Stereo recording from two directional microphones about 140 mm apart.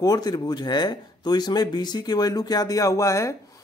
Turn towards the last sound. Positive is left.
turn(degrees=25)  # may be behind; listen again after turning